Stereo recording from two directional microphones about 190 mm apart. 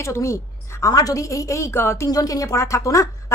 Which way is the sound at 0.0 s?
15° left (ahead or behind).